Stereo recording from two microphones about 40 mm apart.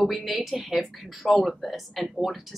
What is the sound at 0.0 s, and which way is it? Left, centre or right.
Speech, centre.